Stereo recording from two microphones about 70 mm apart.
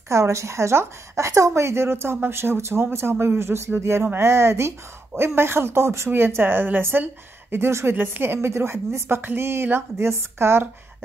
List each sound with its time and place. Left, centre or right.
0.1 s a woman's voice: right